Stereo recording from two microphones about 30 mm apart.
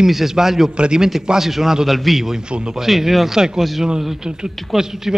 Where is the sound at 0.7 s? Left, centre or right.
Right.